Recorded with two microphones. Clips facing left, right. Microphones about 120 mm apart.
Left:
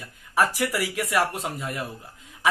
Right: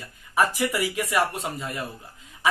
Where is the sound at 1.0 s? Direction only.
Centre (ahead or behind).